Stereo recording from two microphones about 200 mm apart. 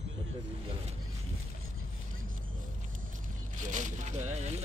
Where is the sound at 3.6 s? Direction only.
35° right (ahead or behind).